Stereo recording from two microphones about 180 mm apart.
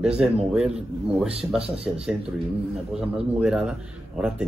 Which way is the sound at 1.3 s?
35° right (ahead or behind).